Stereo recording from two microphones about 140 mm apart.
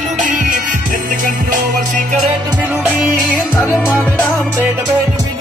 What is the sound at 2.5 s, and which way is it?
Music, 15° right (ahead or behind).